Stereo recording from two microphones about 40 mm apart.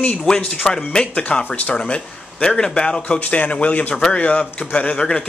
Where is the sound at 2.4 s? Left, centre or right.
Centre.